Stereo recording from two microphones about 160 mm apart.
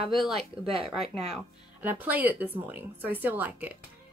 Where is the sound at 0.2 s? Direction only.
Centre (ahead or behind).